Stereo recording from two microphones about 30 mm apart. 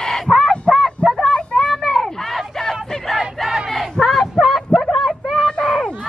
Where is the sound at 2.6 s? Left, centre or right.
Centre.